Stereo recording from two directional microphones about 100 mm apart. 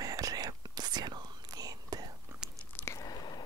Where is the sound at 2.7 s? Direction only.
25° left (ahead or behind).